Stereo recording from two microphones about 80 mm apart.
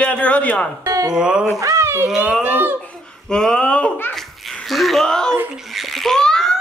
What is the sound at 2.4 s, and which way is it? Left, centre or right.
Speech, right.